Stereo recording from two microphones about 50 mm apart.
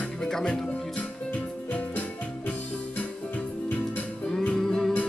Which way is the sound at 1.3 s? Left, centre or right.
Left.